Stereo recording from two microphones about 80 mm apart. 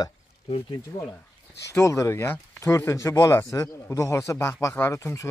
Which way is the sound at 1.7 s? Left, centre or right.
Left.